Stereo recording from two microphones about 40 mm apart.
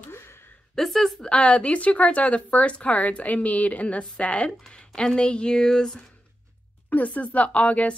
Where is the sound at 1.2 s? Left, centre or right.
Left.